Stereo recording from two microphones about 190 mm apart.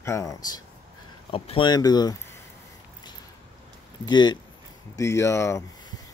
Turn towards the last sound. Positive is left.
turn(degrees=15)  # may be behind; listen again after turning